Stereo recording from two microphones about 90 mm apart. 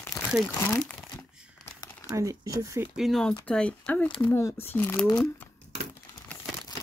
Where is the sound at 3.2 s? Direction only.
10° left (ahead or behind).